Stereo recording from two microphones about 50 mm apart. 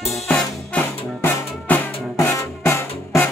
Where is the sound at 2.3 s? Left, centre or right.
Left.